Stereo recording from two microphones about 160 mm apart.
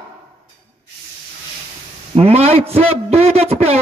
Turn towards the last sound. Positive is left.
turn(degrees=-40)  # may be behind; listen again after turning